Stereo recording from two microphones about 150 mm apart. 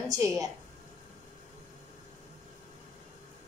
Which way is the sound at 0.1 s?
25° right (ahead or behind).